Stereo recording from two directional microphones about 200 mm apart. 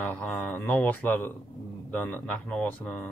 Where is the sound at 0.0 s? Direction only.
10° left (ahead or behind).